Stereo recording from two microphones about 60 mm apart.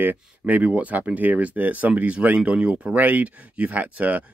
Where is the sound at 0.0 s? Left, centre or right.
Right.